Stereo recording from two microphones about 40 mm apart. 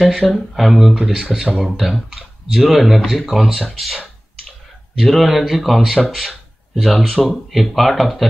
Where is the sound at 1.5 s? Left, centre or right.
Centre.